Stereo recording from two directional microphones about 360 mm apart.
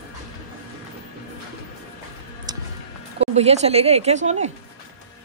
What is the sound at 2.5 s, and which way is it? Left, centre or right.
Music, centre.